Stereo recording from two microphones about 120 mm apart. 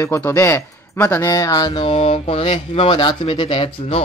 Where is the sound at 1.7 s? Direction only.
50° left (ahead or behind).